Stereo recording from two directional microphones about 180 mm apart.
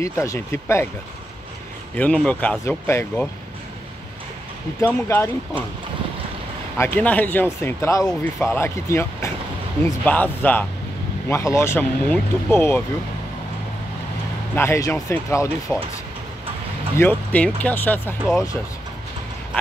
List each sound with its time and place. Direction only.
0.0 s speech: 15° left (ahead or behind)
2.0 s speech: 5° left (ahead or behind)
4.8 s speech: 15° left (ahead or behind)
6.8 s speech: 10° left (ahead or behind)
14.5 s speech: 15° left (ahead or behind)
16.9 s speech: 10° left (ahead or behind)